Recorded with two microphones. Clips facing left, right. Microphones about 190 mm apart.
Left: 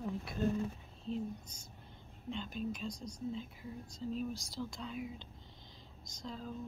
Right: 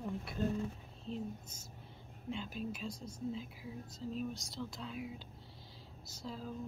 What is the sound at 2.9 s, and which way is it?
Speech, 25° right (ahead or behind).